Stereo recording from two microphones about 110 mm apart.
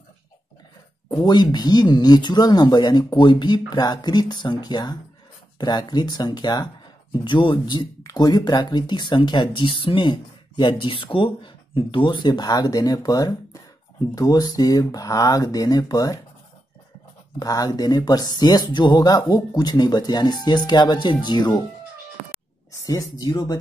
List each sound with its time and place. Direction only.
1.2 s speech: 40° left (ahead or behind)
8.0 s speech: 35° left (ahead or behind)
17.4 s speech: 35° left (ahead or behind)
22.7 s speech: 30° left (ahead or behind)